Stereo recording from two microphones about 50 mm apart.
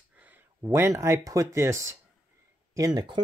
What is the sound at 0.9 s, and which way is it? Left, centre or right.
Speech, right.